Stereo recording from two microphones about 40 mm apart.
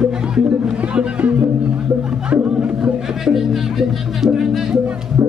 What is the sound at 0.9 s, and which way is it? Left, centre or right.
Music, right.